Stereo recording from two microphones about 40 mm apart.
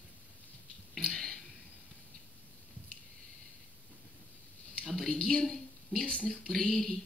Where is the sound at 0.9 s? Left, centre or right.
Centre.